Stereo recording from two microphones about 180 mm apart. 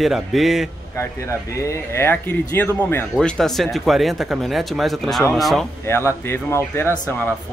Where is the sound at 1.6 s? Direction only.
15° left (ahead or behind).